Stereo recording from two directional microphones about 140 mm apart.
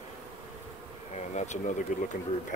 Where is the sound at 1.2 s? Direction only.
55° left (ahead or behind).